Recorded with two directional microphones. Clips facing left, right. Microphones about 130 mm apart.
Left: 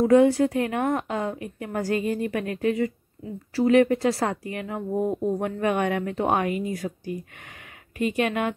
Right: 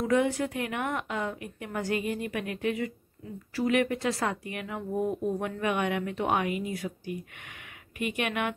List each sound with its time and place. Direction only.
0.0 s speech: 35° left (ahead or behind)